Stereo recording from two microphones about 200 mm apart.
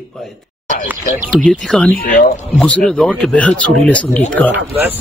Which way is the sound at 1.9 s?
45° left (ahead or behind).